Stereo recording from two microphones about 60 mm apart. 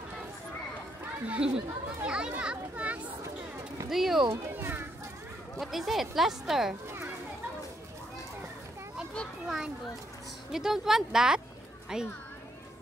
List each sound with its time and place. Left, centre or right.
1.2 s a child's voice: right
3.9 s speech: centre
4.4 s speech: right
5.6 s speech: centre
10.5 s speech: centre